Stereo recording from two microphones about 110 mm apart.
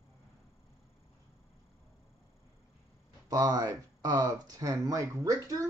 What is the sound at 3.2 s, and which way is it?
Speech, 35° right (ahead or behind).